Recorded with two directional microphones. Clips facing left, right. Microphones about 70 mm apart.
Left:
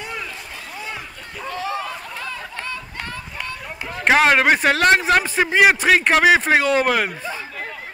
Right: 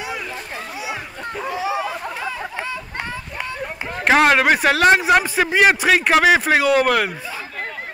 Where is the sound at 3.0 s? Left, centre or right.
Centre.